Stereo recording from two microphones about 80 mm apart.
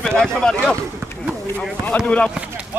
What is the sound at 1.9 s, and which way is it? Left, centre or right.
Speech, left.